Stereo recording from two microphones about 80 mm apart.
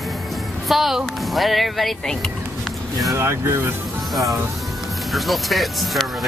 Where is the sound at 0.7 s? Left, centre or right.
Centre.